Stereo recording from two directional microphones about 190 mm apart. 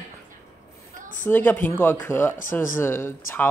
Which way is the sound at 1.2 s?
10° left (ahead or behind).